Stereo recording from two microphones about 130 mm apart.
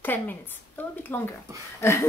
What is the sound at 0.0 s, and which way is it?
A woman's voice, 15° left (ahead or behind).